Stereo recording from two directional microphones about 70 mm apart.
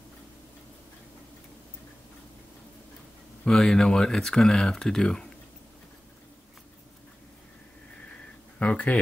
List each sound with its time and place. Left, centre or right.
3.4 s speech: centre
8.5 s speech: centre